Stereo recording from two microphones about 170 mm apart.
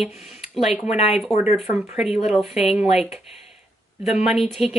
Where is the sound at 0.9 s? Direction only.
40° left (ahead or behind).